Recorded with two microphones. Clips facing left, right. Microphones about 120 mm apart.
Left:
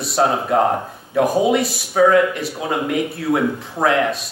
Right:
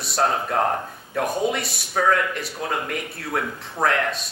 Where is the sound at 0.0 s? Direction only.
5° left (ahead or behind).